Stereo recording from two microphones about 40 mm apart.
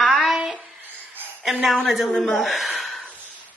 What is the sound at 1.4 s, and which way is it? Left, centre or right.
A woman's voice, centre.